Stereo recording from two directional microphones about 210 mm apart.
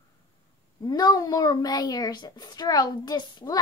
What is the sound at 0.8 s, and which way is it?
A child's voice, 20° left (ahead or behind).